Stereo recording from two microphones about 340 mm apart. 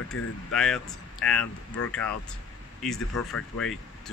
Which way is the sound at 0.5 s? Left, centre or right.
Centre.